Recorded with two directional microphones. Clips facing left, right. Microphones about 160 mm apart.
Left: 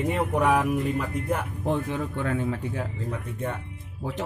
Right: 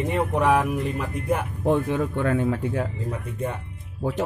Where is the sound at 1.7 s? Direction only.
60° right (ahead or behind).